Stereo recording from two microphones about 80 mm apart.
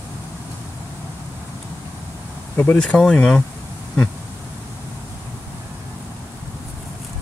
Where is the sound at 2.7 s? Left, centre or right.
Centre.